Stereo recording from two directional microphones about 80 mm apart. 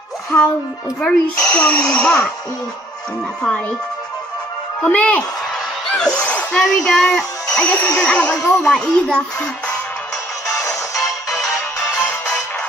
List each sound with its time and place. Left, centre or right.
0.3 s a woman's voice: left
1.0 s speech: centre
4.8 s speech: centre
5.9 s a sound: centre
6.6 s speech: centre
10.6 s music: left